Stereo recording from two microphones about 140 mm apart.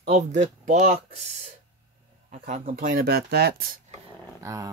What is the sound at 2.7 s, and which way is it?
Speech, 85° right.